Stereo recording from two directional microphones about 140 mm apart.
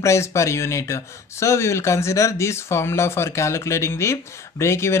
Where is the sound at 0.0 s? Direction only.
20° left (ahead or behind).